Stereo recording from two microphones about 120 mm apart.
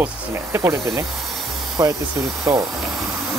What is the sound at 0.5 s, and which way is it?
Speech, 20° right (ahead or behind).